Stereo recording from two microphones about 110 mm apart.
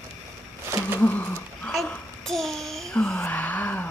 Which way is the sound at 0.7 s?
25° right (ahead or behind).